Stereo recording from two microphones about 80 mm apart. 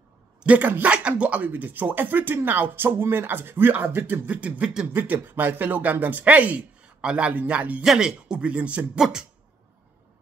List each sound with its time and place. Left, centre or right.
0.4 s speech: centre
4.8 s speech: right